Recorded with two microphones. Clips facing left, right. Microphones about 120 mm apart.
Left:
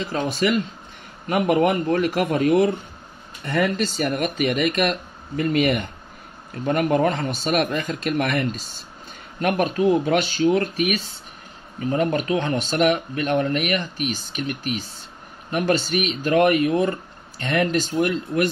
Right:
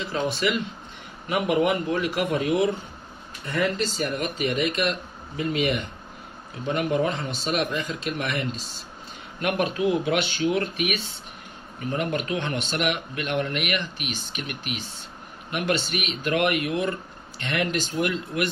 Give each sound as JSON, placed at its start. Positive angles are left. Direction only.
{"t": 1.3, "sound": "speech", "side_deg": 45}